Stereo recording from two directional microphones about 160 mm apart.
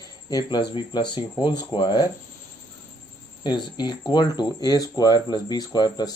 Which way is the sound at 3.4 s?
30° left (ahead or behind).